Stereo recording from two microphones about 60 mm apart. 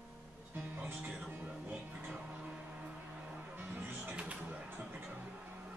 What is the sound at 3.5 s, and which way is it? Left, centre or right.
Music, right.